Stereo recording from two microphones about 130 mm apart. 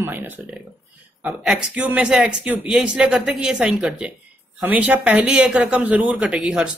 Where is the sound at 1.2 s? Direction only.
5° right (ahead or behind).